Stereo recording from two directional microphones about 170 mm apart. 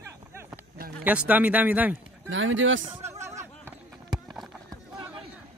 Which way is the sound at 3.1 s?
15° right (ahead or behind).